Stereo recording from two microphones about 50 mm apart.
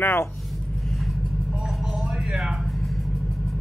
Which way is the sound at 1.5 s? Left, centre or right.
Centre.